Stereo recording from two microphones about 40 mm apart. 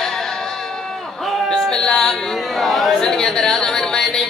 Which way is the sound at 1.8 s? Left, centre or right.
Centre.